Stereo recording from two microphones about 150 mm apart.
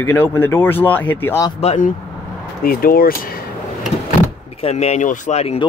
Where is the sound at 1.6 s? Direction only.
45° left (ahead or behind).